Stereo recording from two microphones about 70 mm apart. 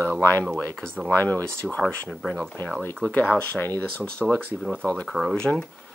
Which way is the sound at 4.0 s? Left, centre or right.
Centre.